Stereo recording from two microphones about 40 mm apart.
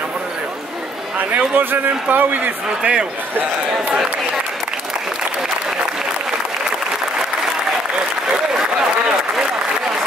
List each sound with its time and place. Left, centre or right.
1.1 s a man's voice: right
2.8 s speech: right